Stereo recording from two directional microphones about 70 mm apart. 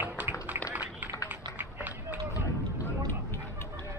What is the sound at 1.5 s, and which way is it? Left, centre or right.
Run, right.